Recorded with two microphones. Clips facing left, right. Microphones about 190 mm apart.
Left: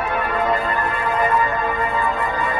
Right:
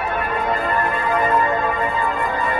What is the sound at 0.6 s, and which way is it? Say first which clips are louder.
Music: right 1 dB; 55° right (ahead or behind).